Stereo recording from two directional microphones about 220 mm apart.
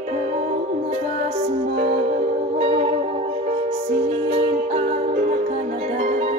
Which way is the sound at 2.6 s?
30° right (ahead or behind).